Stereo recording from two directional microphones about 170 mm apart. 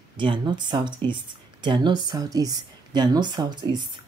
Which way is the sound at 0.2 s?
30° right (ahead or behind).